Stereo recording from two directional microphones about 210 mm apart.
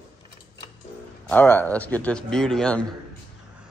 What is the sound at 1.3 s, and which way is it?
A man's voice, 10° left (ahead or behind).